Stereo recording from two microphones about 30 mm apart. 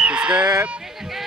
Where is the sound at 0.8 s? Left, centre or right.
Centre.